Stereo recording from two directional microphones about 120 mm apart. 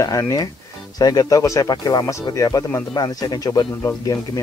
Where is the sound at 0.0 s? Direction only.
30° left (ahead or behind).